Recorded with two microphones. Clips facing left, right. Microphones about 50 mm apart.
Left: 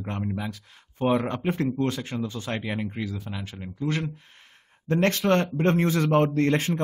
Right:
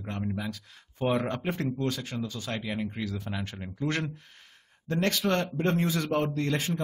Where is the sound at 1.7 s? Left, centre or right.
Left.